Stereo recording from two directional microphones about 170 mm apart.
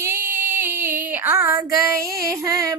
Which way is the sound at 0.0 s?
15° right (ahead or behind).